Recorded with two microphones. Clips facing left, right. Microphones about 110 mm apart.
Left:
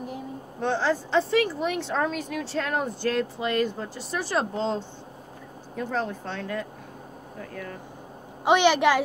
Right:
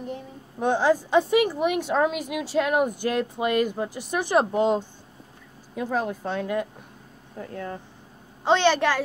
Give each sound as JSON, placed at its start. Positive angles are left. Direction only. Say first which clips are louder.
{"t": 0.6, "sound": "speech", "louder": "right 4 dB", "side_deg": -15}
{"t": 7.4, "sound": "speech", "louder": "right 4 dB", "side_deg": -25}
{"t": 8.5, "sound": "a woman's voice", "louder": "left 1 dB", "side_deg": 15}